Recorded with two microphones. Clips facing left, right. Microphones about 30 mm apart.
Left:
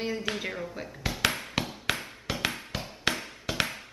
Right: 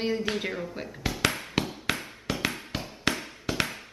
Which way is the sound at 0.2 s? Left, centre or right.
Centre.